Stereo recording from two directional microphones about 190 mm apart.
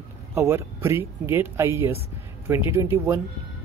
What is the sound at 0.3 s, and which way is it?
Speech, 15° right (ahead or behind).